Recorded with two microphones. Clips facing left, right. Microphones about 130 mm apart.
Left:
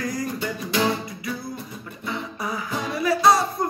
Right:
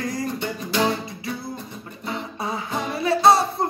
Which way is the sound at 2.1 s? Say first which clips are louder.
Right 1 dB; 25° right (ahead or behind).